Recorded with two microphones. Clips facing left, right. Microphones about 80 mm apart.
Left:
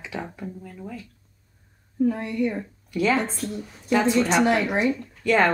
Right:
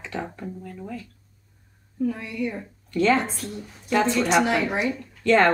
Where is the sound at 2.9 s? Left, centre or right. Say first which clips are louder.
Right 2 dB; centre.